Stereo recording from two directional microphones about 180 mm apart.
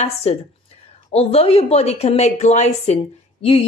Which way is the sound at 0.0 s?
35° left (ahead or behind).